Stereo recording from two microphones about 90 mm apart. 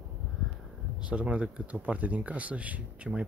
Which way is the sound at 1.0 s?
15° right (ahead or behind).